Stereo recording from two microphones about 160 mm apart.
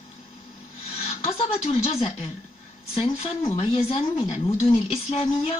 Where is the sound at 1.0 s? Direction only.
40° left (ahead or behind).